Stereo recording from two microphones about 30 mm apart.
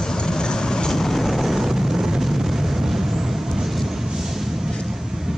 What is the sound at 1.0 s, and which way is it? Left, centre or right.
Vehicle, centre.